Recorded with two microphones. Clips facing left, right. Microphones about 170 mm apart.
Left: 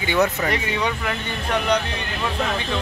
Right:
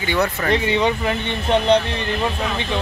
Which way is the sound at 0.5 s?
25° right (ahead or behind).